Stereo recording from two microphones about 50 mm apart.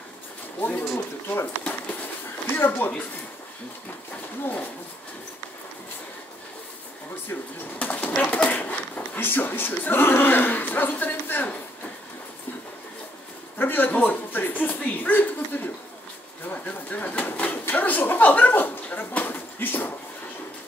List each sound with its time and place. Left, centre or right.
0.6 s speech: left
0.9 s a sound: left
1.6 s a sound: left
2.5 s speech: left
7.8 s speech: left
13.6 s speech: left
16.5 s pigeon: left